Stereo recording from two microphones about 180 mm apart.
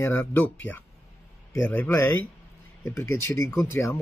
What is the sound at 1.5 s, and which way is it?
Speech, 10° left (ahead or behind).